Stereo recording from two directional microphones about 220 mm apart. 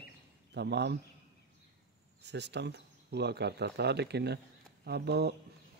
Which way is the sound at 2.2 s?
50° right (ahead or behind).